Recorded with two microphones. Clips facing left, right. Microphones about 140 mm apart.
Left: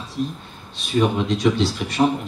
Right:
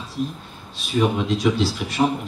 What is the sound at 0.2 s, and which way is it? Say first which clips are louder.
A man's voice: left 1 dB; centre (ahead or behind).